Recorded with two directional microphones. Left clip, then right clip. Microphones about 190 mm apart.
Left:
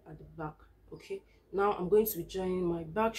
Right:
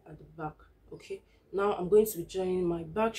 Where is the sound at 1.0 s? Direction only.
15° right (ahead or behind).